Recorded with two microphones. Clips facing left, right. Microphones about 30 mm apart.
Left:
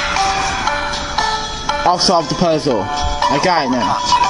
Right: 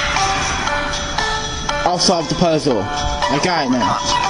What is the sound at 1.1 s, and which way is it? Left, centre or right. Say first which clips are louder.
Music: left 3 dB; left.